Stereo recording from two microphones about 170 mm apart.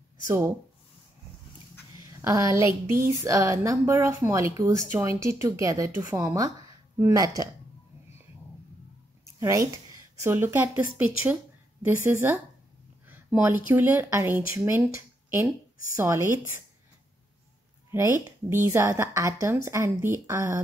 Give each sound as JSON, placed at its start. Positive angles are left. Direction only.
{"t": 2.2, "sound": "a woman's voice", "side_deg": -15}
{"t": 9.4, "sound": "speech", "side_deg": -20}
{"t": 15.0, "sound": "a sound", "side_deg": -15}
{"t": 16.0, "sound": "speech", "side_deg": -15}
{"t": 17.9, "sound": "speech", "side_deg": -15}